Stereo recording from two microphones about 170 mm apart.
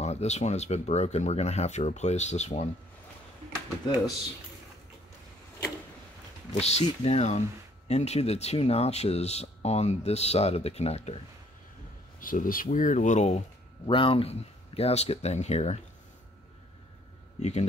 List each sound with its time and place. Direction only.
0.0 s speech: 40° left (ahead or behind)
6.5 s speech: 40° left (ahead or behind)
12.2 s speech: 55° left (ahead or behind)
13.8 s speech: 30° left (ahead or behind)
17.4 s speech: 40° left (ahead or behind)